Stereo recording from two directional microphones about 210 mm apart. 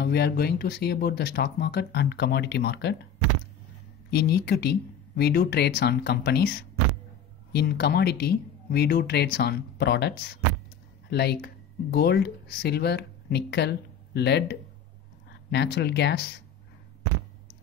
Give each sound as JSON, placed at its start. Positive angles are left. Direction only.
{"t": 0.0, "sound": "speech", "side_deg": 50}
{"t": 4.1, "sound": "speech", "side_deg": 50}